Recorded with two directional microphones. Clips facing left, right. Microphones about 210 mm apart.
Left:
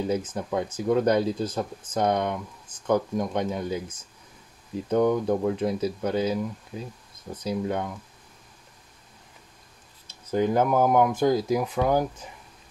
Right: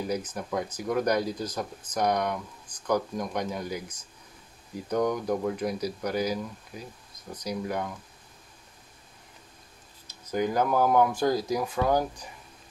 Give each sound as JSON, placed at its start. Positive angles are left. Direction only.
{"t": 0.0, "sound": "speech", "side_deg": 25}
{"t": 10.0, "sound": "speech", "side_deg": 25}